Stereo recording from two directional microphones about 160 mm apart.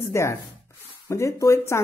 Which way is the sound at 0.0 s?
15° left (ahead or behind).